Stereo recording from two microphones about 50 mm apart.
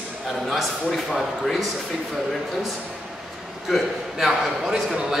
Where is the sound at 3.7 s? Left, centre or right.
Centre.